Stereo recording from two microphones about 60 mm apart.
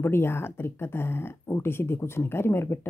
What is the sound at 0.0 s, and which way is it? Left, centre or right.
Speech, left.